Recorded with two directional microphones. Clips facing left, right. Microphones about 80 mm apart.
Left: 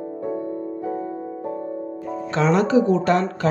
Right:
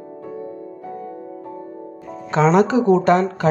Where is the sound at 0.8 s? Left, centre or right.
Left.